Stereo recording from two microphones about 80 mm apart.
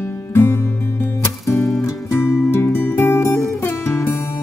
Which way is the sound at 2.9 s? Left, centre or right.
Left.